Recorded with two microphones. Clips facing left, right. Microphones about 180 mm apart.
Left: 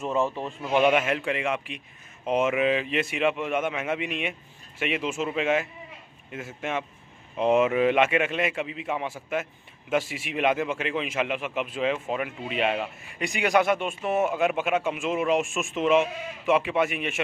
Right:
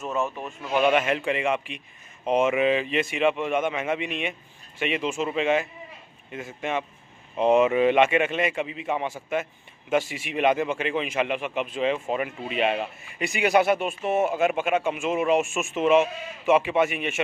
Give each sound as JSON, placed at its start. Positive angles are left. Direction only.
{"t": 0.0, "sound": "speech", "side_deg": 30}
{"t": 0.6, "sound": "a man's voice", "side_deg": 10}
{"t": 1.0, "sound": "speech", "side_deg": 0}